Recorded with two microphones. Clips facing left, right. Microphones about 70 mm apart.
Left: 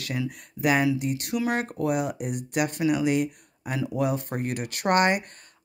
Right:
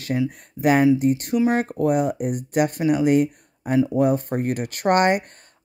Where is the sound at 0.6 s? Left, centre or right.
Right.